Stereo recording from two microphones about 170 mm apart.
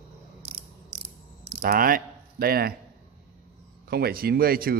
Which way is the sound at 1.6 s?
55° right (ahead or behind).